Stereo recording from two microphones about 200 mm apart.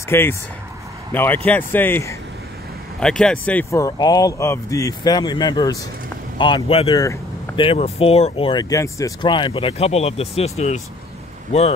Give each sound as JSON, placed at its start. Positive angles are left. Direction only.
{"t": 0.1, "sound": "speech", "side_deg": 10}